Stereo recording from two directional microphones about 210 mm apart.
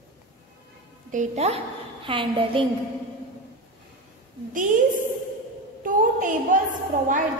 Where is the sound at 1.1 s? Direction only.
35° right (ahead or behind).